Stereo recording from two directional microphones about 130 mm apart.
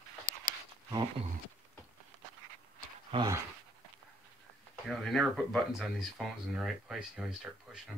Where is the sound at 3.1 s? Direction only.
50° right (ahead or behind).